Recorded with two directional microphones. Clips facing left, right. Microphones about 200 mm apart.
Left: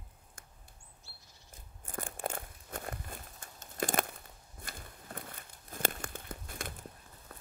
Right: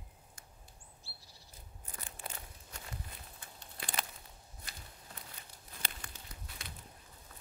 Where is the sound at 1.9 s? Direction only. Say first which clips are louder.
Left 10 dB; 50° left (ahead or behind).